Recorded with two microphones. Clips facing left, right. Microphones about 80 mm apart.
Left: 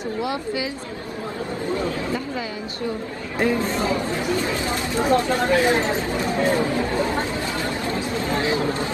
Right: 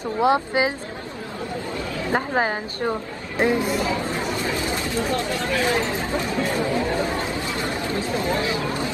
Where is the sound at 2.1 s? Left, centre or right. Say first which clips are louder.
Right 5 dB; right.